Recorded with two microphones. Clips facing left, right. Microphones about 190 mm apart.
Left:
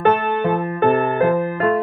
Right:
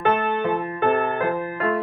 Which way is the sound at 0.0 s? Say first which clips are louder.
Left 4 dB; 50° left (ahead or behind).